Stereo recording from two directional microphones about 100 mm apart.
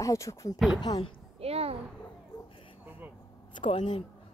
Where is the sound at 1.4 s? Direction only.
90° right.